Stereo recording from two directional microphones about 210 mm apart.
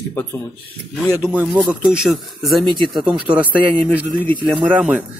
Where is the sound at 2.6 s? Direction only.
25° right (ahead or behind).